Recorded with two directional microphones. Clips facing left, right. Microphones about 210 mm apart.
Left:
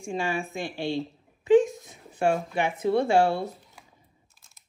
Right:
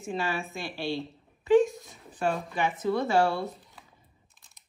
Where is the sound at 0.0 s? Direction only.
15° left (ahead or behind).